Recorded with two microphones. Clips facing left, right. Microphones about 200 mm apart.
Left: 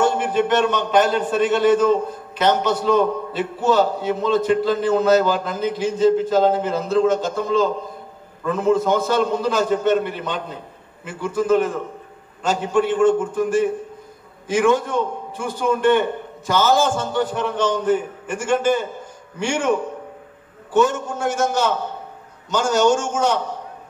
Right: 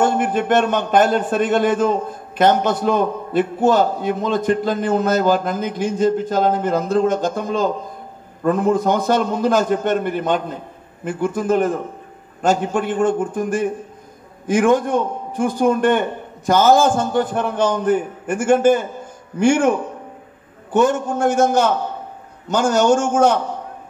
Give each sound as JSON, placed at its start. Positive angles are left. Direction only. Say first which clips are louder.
{"t": 0.0, "sound": "speech", "louder": "right 1 dB", "side_deg": -50}
{"t": 20.7, "sound": "a man's voice", "louder": "right 2 dB", "side_deg": -55}